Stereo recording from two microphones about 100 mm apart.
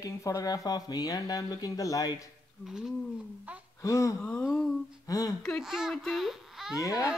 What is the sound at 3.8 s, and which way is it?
Speech, 30° left (ahead or behind).